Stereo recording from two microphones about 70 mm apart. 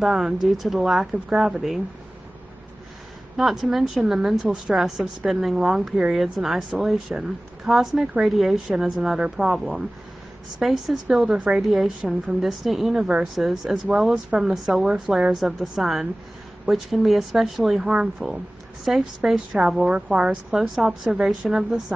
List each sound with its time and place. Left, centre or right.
0.0 s speech: centre
3.3 s speech: centre
11.3 s a woman's voice: centre
11.6 s a woman's voice: centre